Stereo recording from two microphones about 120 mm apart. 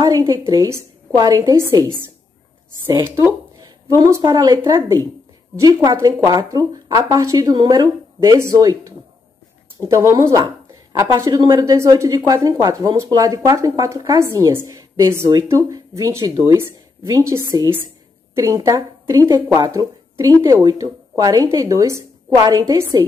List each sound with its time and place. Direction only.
0.0 s a woman's voice: 30° right (ahead or behind)
3.9 s a woman's voice: 30° right (ahead or behind)